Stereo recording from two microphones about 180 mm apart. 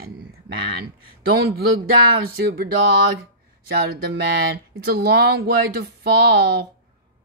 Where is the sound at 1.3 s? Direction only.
60° right (ahead or behind).